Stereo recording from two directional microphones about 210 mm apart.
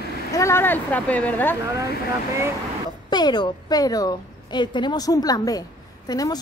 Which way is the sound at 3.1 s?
20° left (ahead or behind).